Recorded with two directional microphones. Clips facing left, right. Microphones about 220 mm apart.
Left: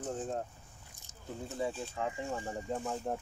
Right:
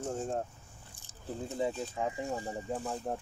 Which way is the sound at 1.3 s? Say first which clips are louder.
Right 3 dB; 35° right (ahead or behind).